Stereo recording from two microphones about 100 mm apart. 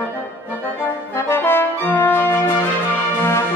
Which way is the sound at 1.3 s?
25° left (ahead or behind).